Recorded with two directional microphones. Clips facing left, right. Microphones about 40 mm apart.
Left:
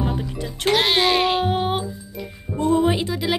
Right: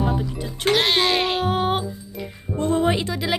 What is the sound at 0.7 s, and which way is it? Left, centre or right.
Speech, centre.